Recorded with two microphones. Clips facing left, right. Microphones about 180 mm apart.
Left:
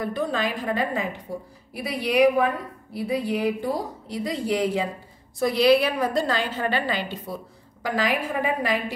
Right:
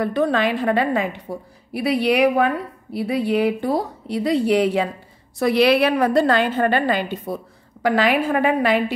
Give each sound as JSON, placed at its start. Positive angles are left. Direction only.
{"t": 0.0, "sound": "a woman's voice", "side_deg": -70}
{"t": 7.8, "sound": "a woman's voice", "side_deg": -70}